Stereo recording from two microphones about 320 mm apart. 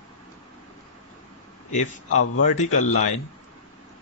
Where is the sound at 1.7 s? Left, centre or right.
Left.